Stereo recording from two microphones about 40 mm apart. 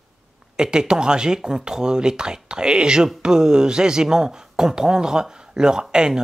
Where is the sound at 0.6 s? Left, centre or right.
Centre.